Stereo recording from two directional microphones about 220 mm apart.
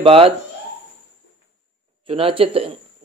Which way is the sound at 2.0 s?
25° right (ahead or behind).